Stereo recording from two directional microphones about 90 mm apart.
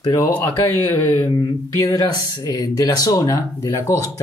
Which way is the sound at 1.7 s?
40° left (ahead or behind).